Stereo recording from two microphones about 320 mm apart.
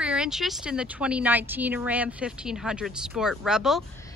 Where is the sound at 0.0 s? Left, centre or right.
Centre.